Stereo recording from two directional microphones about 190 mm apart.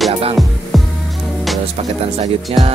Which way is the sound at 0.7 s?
Centre (ahead or behind).